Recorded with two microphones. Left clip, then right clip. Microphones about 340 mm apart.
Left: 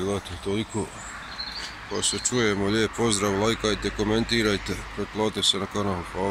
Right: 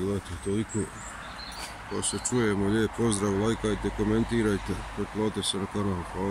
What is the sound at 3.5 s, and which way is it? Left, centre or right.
Speech, left.